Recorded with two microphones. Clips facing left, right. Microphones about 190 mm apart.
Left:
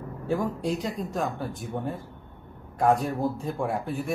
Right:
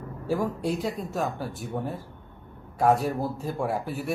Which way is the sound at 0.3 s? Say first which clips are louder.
Even; 5° right (ahead or behind).